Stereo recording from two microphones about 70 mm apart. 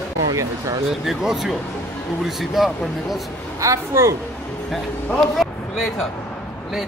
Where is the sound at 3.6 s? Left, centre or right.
Right.